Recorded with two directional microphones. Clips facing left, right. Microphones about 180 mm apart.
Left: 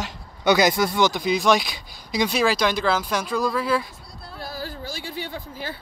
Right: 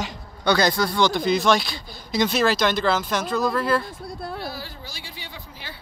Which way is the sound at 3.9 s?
50° right (ahead or behind).